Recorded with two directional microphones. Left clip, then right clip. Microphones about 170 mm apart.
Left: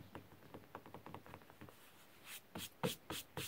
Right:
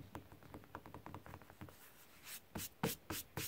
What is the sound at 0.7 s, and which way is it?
Music, 10° right (ahead or behind).